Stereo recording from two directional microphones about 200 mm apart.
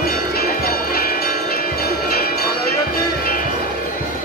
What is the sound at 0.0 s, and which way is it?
Music, 50° left (ahead or behind).